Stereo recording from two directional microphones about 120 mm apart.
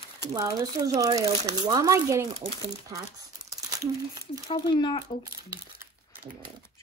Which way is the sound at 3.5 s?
30° right (ahead or behind).